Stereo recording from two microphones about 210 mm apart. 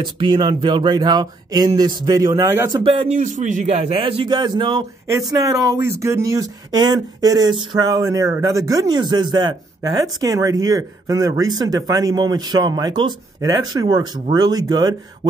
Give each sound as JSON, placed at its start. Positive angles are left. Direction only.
{"t": 0.0, "sound": "speech", "side_deg": -20}
{"t": 2.8, "sound": "speech", "side_deg": -25}
{"t": 3.2, "sound": "speech", "side_deg": -35}